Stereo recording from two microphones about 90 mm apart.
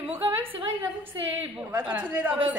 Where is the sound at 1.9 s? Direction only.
20° right (ahead or behind).